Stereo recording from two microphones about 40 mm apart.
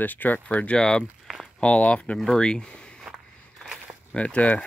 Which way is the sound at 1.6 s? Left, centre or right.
Left.